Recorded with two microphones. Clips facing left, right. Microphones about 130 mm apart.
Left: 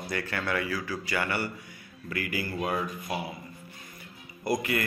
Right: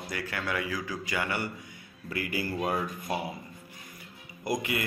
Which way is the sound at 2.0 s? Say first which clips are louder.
Even; 25° right (ahead or behind).